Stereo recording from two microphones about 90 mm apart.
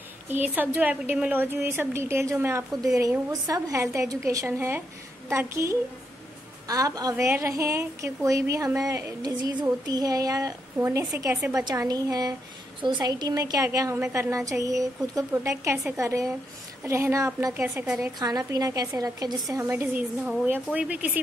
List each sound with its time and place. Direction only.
0.3 s a woman's voice: 20° right (ahead or behind)
3.3 s speech: 40° right (ahead or behind)
6.7 s a woman's voice: 45° right (ahead or behind)
7.2 s a woman's voice: 30° right (ahead or behind)
12.8 s a woman's voice: 55° right (ahead or behind)
19.5 s a woman's voice: 25° right (ahead or behind)